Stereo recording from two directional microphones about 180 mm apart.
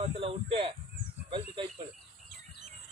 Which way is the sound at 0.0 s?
35° right (ahead or behind).